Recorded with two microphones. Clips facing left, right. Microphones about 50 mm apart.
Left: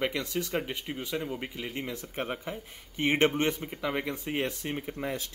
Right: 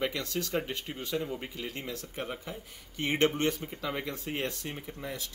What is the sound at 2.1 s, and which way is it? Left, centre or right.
Speech, left.